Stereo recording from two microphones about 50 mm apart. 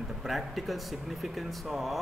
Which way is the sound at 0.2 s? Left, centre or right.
Centre.